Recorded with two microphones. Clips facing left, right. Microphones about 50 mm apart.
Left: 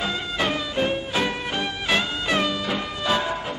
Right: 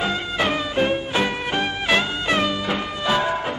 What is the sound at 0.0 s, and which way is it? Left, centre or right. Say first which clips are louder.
Music: right 3 dB; centre.